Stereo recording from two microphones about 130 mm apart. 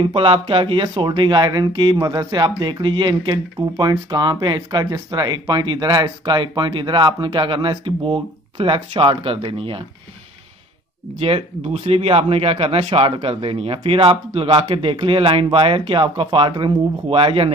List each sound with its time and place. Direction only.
0.0 s speech: 40° right (ahead or behind)
11.1 s speech: 50° right (ahead or behind)